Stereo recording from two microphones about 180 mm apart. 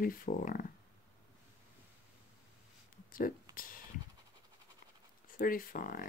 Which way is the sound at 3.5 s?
50° left (ahead or behind).